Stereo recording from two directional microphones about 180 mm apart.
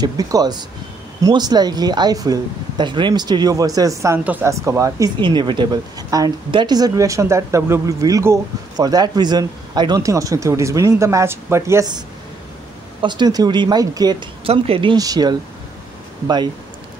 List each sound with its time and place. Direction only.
0.0 s speech: 20° right (ahead or behind)
13.0 s speech: 25° right (ahead or behind)